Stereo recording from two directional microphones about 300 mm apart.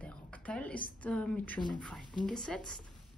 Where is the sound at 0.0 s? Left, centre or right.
Centre.